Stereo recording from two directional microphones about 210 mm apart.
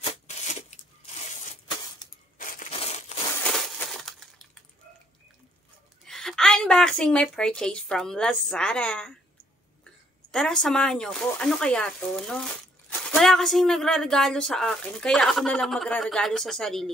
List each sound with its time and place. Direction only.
0.6 s a sound: 30° left (ahead or behind)
2.3 s crushing: 40° left (ahead or behind)
3.5 s crushing: centre (ahead or behind)
6.0 s a woman's voice: centre (ahead or behind)
10.3 s speech: 5° left (ahead or behind)